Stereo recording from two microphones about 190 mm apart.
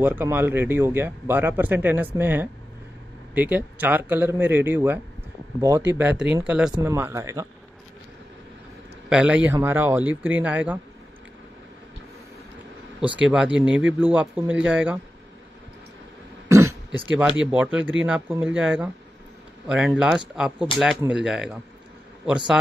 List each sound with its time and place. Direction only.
0.0 s speech: 10° right (ahead or behind)
6.8 s speech: 15° right (ahead or behind)
9.1 s speech: 5° right (ahead or behind)
13.2 s speech: 5° right (ahead or behind)
16.4 s throat clearing: 15° right (ahead or behind)
17.5 s speech: 5° right (ahead or behind)